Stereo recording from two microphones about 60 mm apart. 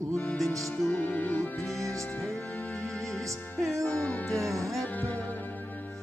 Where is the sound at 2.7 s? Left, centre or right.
Centre.